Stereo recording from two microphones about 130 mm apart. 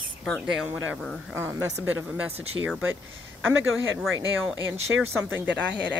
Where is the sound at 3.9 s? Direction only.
10° right (ahead or behind).